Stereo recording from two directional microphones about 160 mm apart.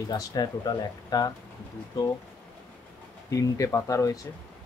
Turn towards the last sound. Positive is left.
turn(degrees=20)  # may be behind; listen again after turning